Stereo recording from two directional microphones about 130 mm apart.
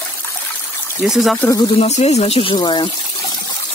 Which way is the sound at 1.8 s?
55° left (ahead or behind).